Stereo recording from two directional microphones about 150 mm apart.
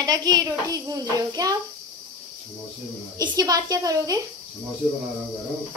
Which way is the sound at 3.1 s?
25° right (ahead or behind).